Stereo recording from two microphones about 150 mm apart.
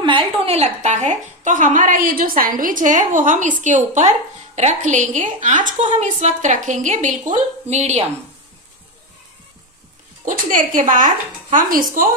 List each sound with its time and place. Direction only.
0.0 s a woman's voice: 40° right (ahead or behind)
10.2 s a woman's voice: 60° right (ahead or behind)